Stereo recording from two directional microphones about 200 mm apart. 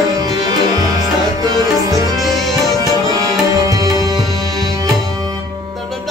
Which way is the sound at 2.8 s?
20° right (ahead or behind).